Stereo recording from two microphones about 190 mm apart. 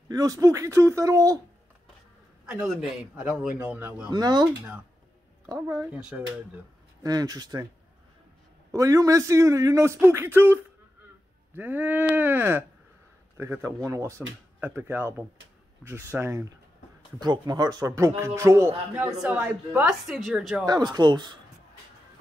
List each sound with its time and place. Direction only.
0.1 s speech: 20° right (ahead or behind)
2.4 s speech: 5° right (ahead or behind)
4.1 s speech: 20° right (ahead or behind)
5.5 s speech: 15° right (ahead or behind)
5.9 s speech: 5° right (ahead or behind)
7.0 s speech: 20° right (ahead or behind)
8.7 s speech: 15° right (ahead or behind); by 20.6 s centre (ahead or behind)
20.6 s speech: 20° right (ahead or behind)